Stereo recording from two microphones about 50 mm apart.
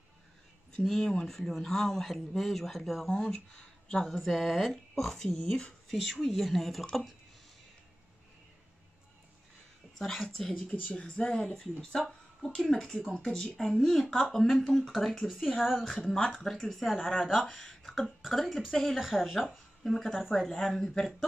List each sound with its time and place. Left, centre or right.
0.8 s speech: centre
4.0 s speech: centre
9.9 s speech: centre
10.7 s speech: left
11.0 s speech: centre
19.8 s a woman's voice: centre